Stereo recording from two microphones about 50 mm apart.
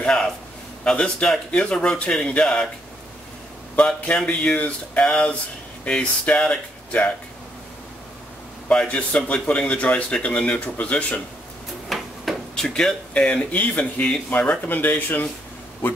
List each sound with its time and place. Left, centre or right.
0.0 s a sound: centre
0.8 s speech: centre
3.7 s a man's voice: left
5.0 s a man's voice: centre
8.6 s a man's voice: left
11.9 s a sound: centre
12.5 s speech: centre
13.3 s a man's voice: left